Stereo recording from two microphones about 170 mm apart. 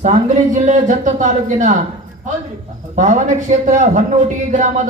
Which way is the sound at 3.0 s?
45° right (ahead or behind).